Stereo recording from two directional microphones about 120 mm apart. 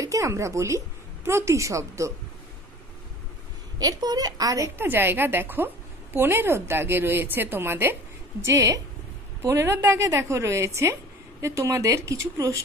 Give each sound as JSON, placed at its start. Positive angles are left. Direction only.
{"t": 0.0, "sound": "a woman's voice", "side_deg": -25}
{"t": 3.8, "sound": "a woman's voice", "side_deg": -30}
{"t": 4.7, "sound": "a woman's voice", "side_deg": -15}